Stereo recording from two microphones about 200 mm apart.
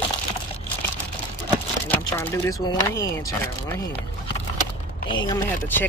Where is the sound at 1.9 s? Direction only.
10° left (ahead or behind).